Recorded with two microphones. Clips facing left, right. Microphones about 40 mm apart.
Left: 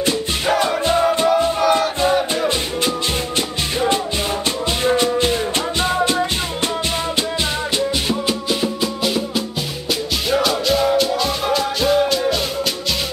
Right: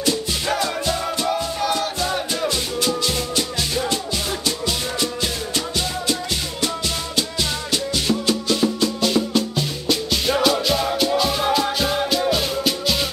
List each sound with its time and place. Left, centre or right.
0.6 s music: left
7.7 s music: left; by 12.7 s centre